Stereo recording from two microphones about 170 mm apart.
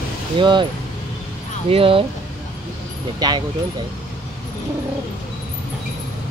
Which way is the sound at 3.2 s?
25° right (ahead or behind).